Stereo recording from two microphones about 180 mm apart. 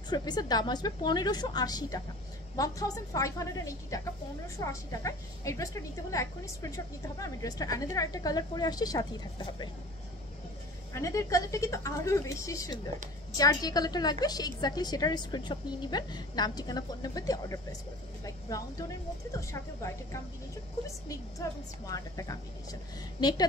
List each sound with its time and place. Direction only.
0.1 s a woman's voice: 20° left (ahead or behind)
10.9 s a woman's voice: 15° left (ahead or behind)